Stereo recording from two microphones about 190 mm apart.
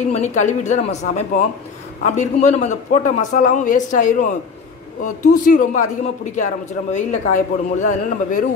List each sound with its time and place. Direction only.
0.1 s a man's voice: 40° left (ahead or behind)